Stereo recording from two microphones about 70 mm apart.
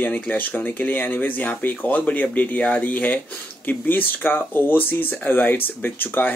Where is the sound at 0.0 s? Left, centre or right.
Left.